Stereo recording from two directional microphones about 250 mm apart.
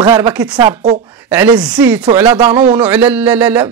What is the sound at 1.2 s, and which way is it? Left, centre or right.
Speech, centre.